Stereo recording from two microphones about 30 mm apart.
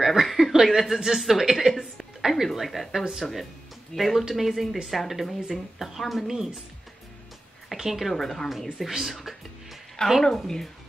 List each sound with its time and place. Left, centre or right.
0.0 s chuckle: centre
0.7 s speech: centre
1.7 s music: centre
2.2 s speech: centre
3.9 s speech: centre
4.2 s speech: centre
4.5 s speech: centre
7.7 s a woman's voice: centre
8.1 s speech: centre
8.8 s speech: centre
9.2 s music: centre
10.0 s a woman's voice: left
10.4 s speech: centre